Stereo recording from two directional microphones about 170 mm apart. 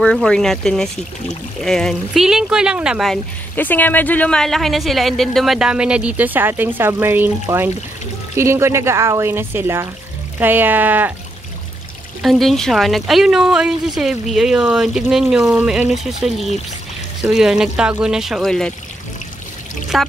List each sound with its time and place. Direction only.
0.0 s speech: 5° left (ahead or behind)
3.5 s speech: 10° left (ahead or behind); by 11.1 s 10° right (ahead or behind)
12.2 s speech: centre (ahead or behind)
19.9 s pour: centre (ahead or behind)